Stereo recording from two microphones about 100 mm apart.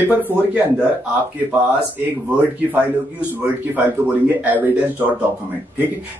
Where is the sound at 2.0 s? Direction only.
20° right (ahead or behind).